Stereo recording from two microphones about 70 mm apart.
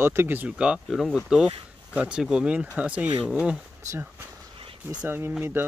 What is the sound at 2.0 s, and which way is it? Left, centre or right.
Speech, centre.